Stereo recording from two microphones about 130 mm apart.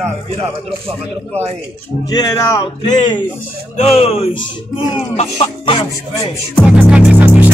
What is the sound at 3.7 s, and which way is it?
Speech, 50° left (ahead or behind).